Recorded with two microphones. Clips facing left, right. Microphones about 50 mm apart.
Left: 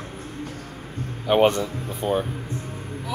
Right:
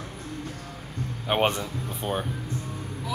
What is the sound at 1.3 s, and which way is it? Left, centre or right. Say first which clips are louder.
Speech: left 6 dB; centre.